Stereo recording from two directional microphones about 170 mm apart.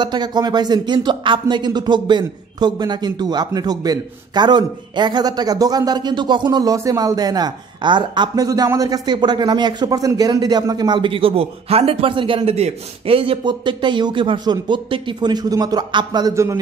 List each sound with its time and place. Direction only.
0.0 s speech: 25° right (ahead or behind)